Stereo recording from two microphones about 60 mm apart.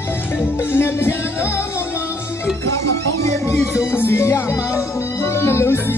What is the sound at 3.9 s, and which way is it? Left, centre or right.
Speech, left.